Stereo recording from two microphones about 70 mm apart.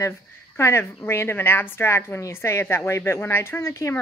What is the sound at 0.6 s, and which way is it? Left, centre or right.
Speech, left.